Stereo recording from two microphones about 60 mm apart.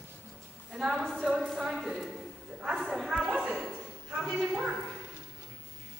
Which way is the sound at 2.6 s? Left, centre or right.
Centre.